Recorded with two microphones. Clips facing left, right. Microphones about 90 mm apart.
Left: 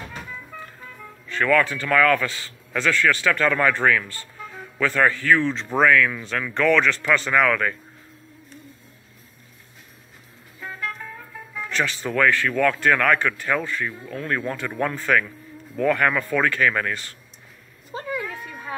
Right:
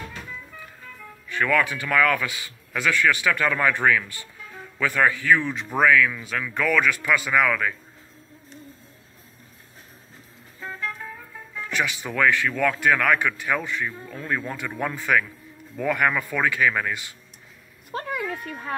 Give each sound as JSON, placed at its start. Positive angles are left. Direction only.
{"t": 1.3, "sound": "speech", "side_deg": -15}
{"t": 10.6, "sound": "music", "side_deg": -30}
{"t": 11.7, "sound": "speech", "side_deg": -15}
{"t": 17.9, "sound": "a sound", "side_deg": -65}
{"t": 18.5, "sound": "speech", "side_deg": 0}